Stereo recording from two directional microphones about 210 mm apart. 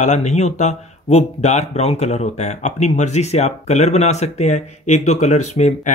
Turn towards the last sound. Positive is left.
turn(degrees=35)  # may be behind; listen again after turning